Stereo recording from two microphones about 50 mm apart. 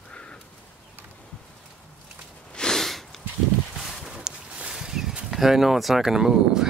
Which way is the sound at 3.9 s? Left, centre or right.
Centre.